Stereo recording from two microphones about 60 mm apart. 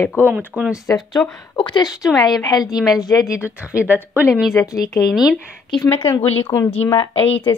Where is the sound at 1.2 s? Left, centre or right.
Centre.